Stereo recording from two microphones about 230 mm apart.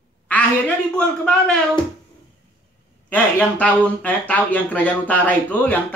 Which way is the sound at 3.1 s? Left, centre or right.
Centre.